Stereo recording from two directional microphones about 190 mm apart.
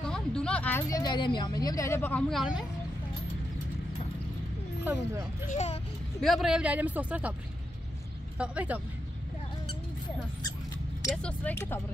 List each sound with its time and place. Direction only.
0.0 s speech: 5° left (ahead or behind)
4.8 s speech: 10° right (ahead or behind)
5.5 s speech: 35° left (ahead or behind)
6.2 s speech: centre (ahead or behind)
8.4 s speech: 5° right (ahead or behind)
11.2 s speech: 10° left (ahead or behind)